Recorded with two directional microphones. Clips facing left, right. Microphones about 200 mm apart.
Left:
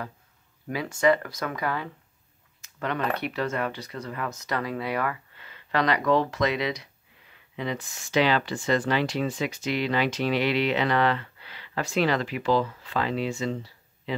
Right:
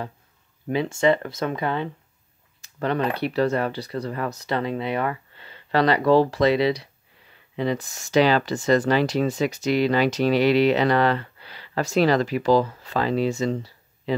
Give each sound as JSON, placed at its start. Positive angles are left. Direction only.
{"t": 0.7, "sound": "speech", "side_deg": -25}
{"t": 2.6, "sound": "a sound", "side_deg": -35}
{"t": 3.2, "sound": "speech", "side_deg": -35}